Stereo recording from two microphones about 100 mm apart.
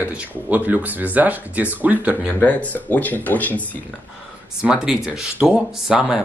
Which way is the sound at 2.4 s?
15° left (ahead or behind).